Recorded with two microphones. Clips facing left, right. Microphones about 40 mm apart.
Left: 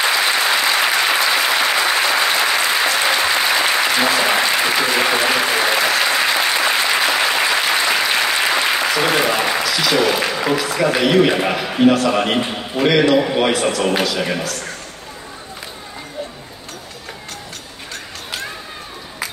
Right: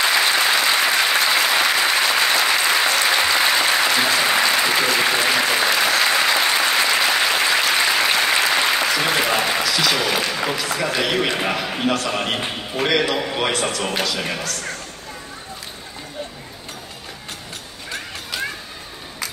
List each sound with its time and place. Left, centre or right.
0.1 s applause: centre
2.3 s applause: centre
9.7 s applause: centre
10.2 s a sound: centre
10.6 s a man's voice: centre